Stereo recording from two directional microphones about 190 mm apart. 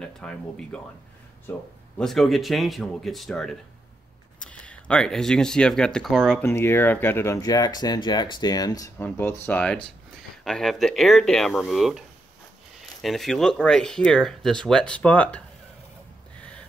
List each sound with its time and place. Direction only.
0.0 s speech: 5° left (ahead or behind)
2.0 s speech: centre (ahead or behind)
6.4 s speech: 10° left (ahead or behind)
13.0 s speech: centre (ahead or behind)
16.3 s gasp: 5° left (ahead or behind)